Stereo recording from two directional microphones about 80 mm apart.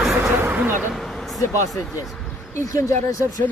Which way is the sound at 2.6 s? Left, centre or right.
Left.